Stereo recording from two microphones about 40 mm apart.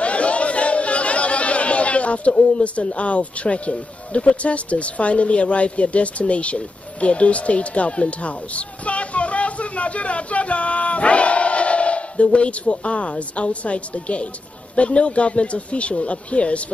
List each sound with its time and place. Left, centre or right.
0.0 s speech: left